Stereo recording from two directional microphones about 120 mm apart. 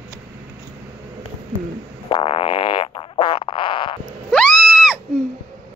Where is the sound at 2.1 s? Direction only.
50° left (ahead or behind).